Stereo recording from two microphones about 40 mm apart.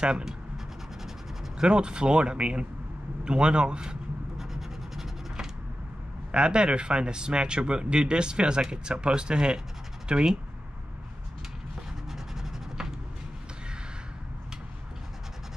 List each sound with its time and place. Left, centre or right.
1.6 s speech: right
4.4 s scratch: centre
6.3 s speech: right
12.1 s a sound: centre